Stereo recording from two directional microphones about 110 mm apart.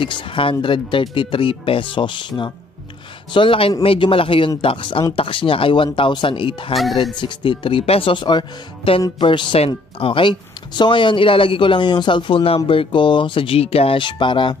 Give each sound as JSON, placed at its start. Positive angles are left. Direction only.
{"t": 0.0, "sound": "speech", "side_deg": 50}
{"t": 6.7, "sound": "speech", "side_deg": 0}
{"t": 7.0, "sound": "speech", "side_deg": 45}